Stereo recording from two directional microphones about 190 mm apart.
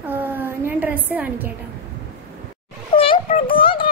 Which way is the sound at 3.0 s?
35° left (ahead or behind).